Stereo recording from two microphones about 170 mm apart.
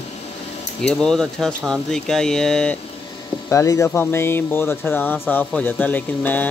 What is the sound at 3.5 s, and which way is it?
Speech, 15° left (ahead or behind).